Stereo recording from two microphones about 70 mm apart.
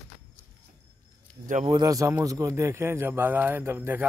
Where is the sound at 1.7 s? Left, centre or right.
Right.